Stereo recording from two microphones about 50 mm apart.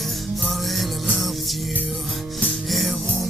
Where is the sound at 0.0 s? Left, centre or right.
Centre.